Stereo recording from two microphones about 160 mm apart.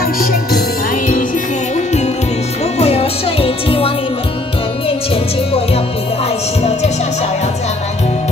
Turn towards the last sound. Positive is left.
turn(degrees=40)  # may be behind; listen again after turning